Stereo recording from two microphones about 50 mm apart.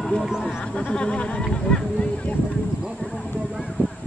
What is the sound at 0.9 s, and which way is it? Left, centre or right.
Speech, left.